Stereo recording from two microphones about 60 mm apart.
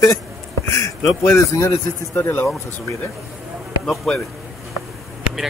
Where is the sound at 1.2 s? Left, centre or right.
Left.